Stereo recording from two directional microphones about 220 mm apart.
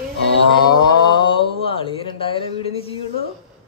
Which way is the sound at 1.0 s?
20° left (ahead or behind).